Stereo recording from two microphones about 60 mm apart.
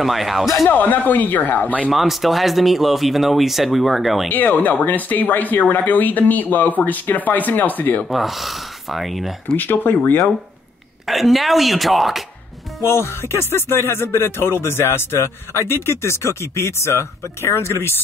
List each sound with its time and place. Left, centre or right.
0.0 s speech: centre
0.7 s speech: left
1.9 s speech: centre
4.6 s speech: left
8.1 s speech: centre
9.6 s speech: left
11.1 s speech: centre
12.8 s speech: left